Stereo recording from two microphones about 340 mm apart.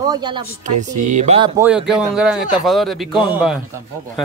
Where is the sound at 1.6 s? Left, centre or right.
Centre.